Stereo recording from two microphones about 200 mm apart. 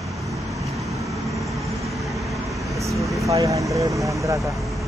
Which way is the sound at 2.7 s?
15° right (ahead or behind).